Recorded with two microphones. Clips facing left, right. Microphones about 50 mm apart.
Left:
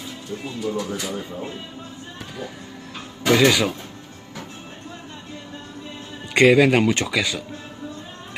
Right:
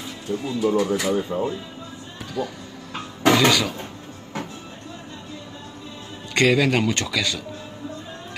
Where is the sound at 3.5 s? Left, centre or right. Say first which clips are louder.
Left 1 dB; centre.